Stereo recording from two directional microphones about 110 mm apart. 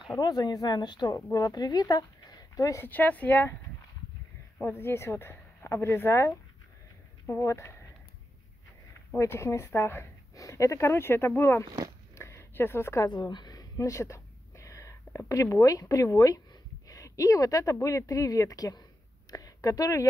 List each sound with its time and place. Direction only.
0.1 s a woman's voice: 35° left (ahead or behind)
2.9 s speech: 15° left (ahead or behind)
4.6 s speech: 20° left (ahead or behind)
9.2 s speech: 25° left (ahead or behind)
12.2 s a sound: 25° left (ahead or behind)
13.1 s a woman's voice: 40° left (ahead or behind)